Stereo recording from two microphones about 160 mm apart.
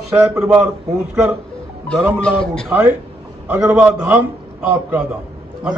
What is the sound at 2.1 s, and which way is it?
Speech, 5° left (ahead or behind).